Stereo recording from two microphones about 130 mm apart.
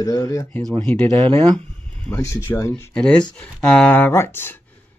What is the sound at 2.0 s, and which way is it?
Speech, 20° left (ahead or behind).